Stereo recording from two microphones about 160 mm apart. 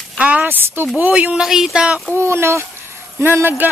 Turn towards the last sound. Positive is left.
turn(degrees=-15)  # may be behind; listen again after turning